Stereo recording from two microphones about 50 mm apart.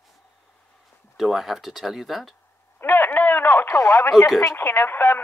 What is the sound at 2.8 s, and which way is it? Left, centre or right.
Speech, left.